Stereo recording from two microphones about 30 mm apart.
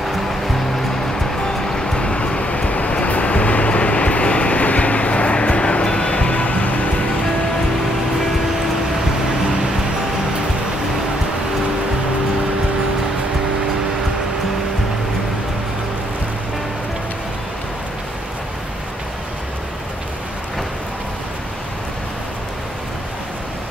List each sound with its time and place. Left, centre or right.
0.0 s music: centre; by 3.1 s left
3.1 s train: left